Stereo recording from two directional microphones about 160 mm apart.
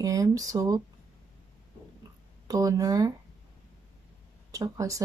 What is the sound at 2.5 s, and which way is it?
Speech, 20° right (ahead or behind).